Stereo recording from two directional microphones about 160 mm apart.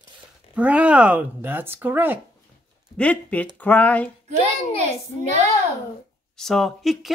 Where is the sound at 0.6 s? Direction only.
10° right (ahead or behind).